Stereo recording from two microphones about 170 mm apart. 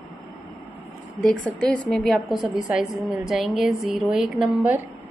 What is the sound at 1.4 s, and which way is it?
A woman's voice, 5° left (ahead or behind).